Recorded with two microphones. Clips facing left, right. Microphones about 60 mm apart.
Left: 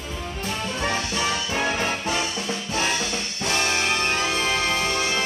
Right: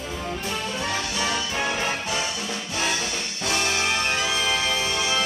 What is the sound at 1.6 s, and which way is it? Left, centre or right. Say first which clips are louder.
Music: left 2 dB; centre.